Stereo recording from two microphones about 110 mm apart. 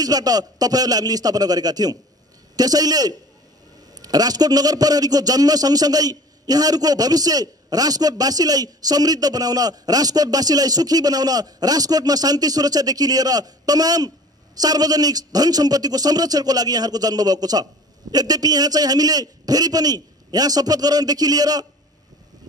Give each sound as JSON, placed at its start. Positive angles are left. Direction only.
{"t": 0.0, "sound": "a man's voice", "side_deg": -35}